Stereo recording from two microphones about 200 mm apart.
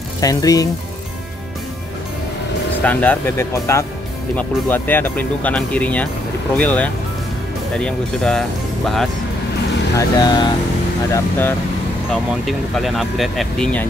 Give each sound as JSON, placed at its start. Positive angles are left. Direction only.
{"t": 0.2, "sound": "speech", "side_deg": 15}
{"t": 2.8, "sound": "speech", "side_deg": 10}
{"t": 9.9, "sound": "speech", "side_deg": 20}
{"t": 11.1, "sound": "speech", "side_deg": 10}
{"t": 12.1, "sound": "speech", "side_deg": 0}